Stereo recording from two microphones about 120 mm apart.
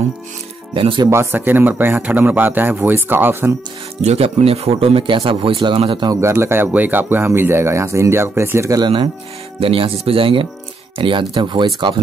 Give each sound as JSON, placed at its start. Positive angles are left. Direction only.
{"t": 0.7, "sound": "speech", "side_deg": -45}
{"t": 1.1, "sound": "speech", "side_deg": -20}
{"t": 4.0, "sound": "speech", "side_deg": -65}
{"t": 6.0, "sound": "speech", "side_deg": -20}
{"t": 9.6, "sound": "speech", "side_deg": -50}